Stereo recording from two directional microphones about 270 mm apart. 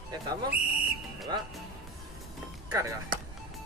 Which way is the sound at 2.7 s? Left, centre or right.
Centre.